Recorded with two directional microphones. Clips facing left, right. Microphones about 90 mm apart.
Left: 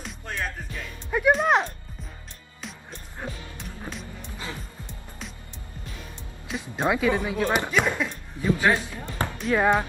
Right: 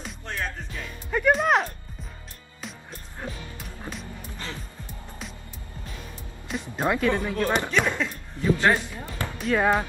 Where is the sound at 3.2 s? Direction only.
10° left (ahead or behind).